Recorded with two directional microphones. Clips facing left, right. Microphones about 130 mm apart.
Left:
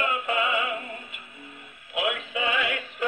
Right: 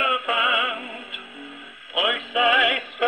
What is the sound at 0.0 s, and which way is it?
Music, 90° right.